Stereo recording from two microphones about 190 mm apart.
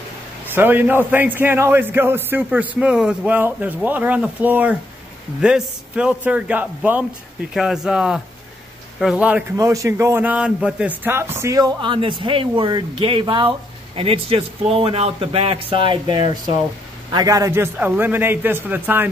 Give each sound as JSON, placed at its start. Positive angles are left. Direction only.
{"t": 0.5, "sound": "a man's voice", "side_deg": -10}